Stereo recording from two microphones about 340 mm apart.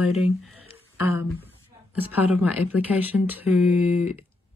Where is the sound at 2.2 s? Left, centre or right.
Left.